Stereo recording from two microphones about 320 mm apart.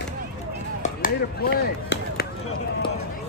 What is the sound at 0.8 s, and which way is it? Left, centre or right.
Chop, left.